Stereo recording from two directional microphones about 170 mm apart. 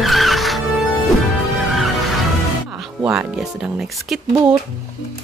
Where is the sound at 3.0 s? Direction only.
5° right (ahead or behind).